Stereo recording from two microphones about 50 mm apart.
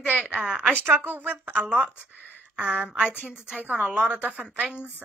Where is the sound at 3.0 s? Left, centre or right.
Left.